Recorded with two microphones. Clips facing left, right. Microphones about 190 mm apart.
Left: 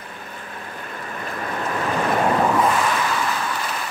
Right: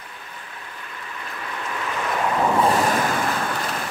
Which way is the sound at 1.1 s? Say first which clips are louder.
Left 6 dB; 45° left (ahead or behind).